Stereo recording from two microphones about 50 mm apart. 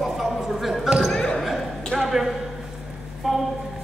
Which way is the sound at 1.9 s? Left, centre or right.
Centre.